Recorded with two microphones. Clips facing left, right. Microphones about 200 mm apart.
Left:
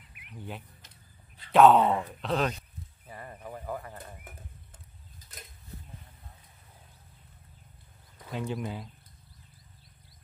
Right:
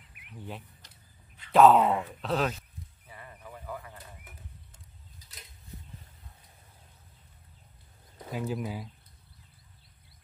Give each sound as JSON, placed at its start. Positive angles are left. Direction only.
{"t": 0.4, "sound": "speech", "side_deg": 0}
{"t": 0.8, "sound": "a sound", "side_deg": 35}
{"t": 1.5, "sound": "speech", "side_deg": 0}
{"t": 3.1, "sound": "a sound", "side_deg": 45}
{"t": 3.4, "sound": "bird", "side_deg": 45}
{"t": 8.3, "sound": "speech", "side_deg": -5}